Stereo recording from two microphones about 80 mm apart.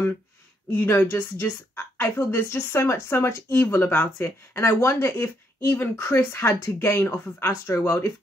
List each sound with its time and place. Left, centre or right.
0.7 s a woman's voice: left